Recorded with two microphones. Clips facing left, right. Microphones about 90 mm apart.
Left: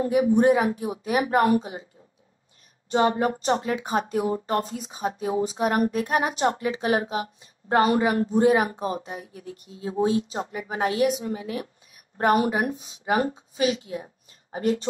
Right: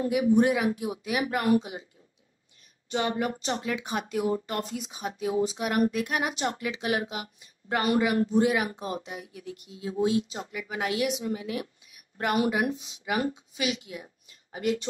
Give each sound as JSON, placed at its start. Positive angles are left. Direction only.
{"t": 0.0, "sound": "speech", "side_deg": 35}
{"t": 2.9, "sound": "speech", "side_deg": 35}